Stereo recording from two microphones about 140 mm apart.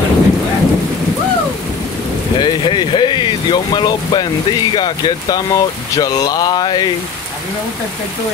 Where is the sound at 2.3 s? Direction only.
35° left (ahead or behind).